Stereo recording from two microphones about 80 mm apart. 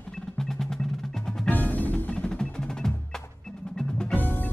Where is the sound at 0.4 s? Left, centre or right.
Centre.